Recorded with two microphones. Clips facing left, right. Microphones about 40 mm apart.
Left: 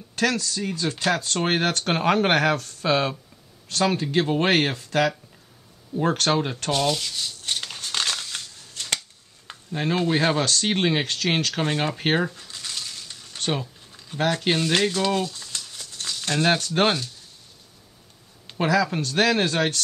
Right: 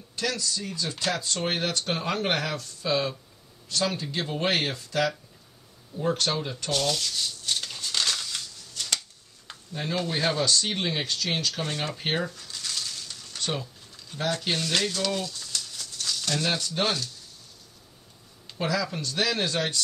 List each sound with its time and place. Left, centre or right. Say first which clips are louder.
0.1 s speech: left 6 dB; left
5.9 s speech: left 4 dB; left
6.3 s speech: left 7 dB; left
6.7 s rub: left 3 dB; centre
7.4 s a sound: left 1 dB; left
9.7 s speech: left 7 dB; left
10.4 s speech: left 3 dB; left
12.0 s a sound: left 6 dB; left
14.2 s speech: left 6 dB; left
18.5 s speech: left 6 dB; left